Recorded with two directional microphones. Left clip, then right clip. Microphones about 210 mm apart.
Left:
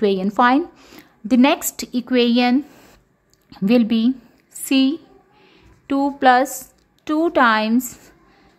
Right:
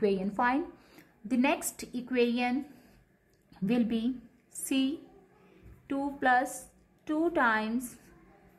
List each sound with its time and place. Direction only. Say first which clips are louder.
0.0 s a woman's voice: left 12 dB; 40° left (ahead or behind)